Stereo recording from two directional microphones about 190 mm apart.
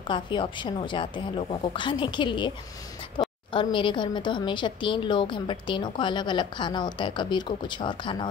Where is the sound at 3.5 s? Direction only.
25° left (ahead or behind).